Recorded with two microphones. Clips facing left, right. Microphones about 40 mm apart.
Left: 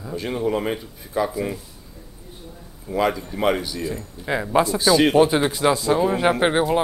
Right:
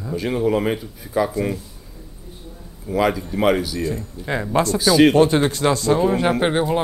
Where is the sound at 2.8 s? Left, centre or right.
Centre.